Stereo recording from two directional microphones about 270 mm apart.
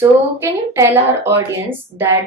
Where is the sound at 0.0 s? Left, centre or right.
Centre.